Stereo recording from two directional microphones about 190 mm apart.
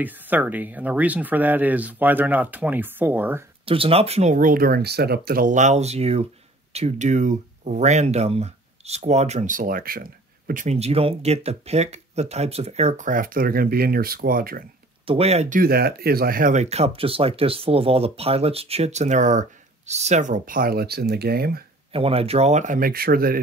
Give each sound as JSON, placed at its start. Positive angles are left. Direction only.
{"t": 0.0, "sound": "speech", "side_deg": -10}
{"t": 3.6, "sound": "speech", "side_deg": -30}
{"t": 15.0, "sound": "speech", "side_deg": -30}
{"t": 15.6, "sound": "speech", "side_deg": -55}
{"t": 21.9, "sound": "speech", "side_deg": -30}